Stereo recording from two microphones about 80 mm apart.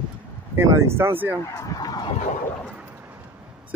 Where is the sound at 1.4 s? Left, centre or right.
Left.